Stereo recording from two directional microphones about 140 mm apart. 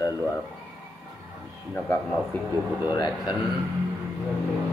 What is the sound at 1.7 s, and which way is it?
Speech, 10° left (ahead or behind).